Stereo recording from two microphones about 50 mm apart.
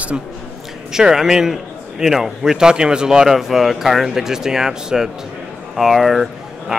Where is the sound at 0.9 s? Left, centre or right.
Centre.